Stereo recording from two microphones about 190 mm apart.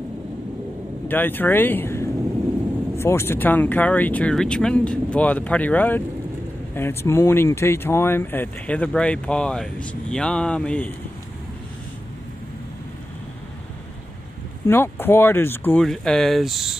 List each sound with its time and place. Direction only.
1.0 s speech: 10° left (ahead or behind)
14.7 s speech: 10° left (ahead or behind)